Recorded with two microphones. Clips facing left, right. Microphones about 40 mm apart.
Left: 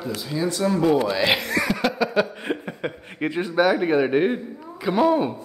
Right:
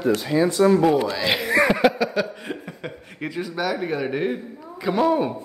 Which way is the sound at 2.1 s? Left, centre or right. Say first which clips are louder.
Left 3 dB; left.